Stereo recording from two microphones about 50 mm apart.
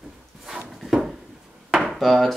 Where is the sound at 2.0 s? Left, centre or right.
Centre.